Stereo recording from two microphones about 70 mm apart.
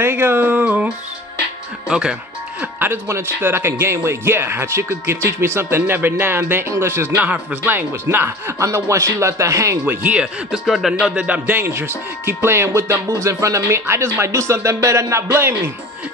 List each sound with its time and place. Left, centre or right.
0.0 s speech: right
1.9 s speech: centre
2.6 s speech: right
10.0 s speech: centre
11.1 s speech: right